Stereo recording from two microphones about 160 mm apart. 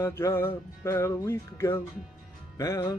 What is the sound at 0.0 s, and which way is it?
Speech, 15° left (ahead or behind).